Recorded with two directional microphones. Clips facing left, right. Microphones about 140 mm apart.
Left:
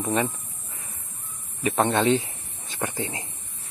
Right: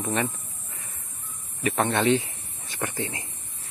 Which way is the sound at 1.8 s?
15° left (ahead or behind).